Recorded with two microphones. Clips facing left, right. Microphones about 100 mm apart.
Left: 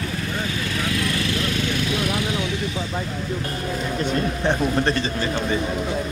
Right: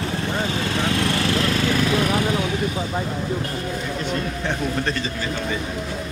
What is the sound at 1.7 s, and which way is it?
Vehicle, 50° right (ahead or behind).